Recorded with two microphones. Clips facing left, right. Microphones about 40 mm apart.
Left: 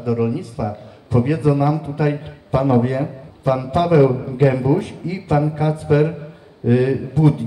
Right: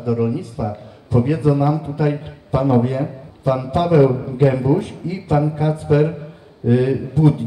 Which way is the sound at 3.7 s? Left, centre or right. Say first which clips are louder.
Even; left.